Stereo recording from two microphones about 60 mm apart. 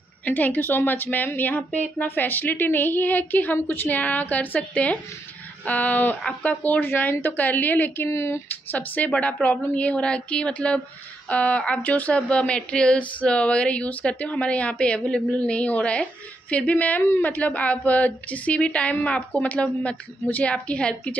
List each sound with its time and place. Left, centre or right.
0.2 s a woman's voice: left
6.9 s a woman's voice: left
8.1 s speech: left
8.5 s speech: left